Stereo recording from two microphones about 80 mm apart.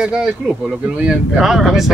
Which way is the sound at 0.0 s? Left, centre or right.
Centre.